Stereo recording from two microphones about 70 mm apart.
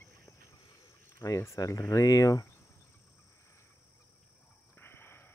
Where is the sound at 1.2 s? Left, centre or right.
Left.